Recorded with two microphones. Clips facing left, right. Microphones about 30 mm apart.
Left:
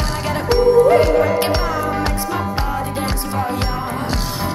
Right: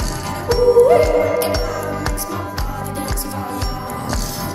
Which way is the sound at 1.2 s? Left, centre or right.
Left.